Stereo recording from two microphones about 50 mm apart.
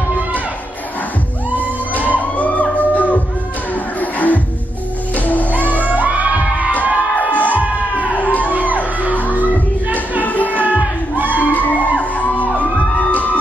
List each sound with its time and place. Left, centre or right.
2.1 s music: left
5.5 s music: right
6.7 s crowd: left
8.2 s music: left
8.5 s music: right
10.2 s music: left